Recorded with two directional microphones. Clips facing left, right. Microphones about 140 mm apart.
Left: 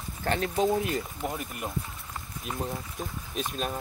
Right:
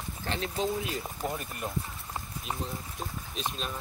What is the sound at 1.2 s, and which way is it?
Speech, 20° left (ahead or behind).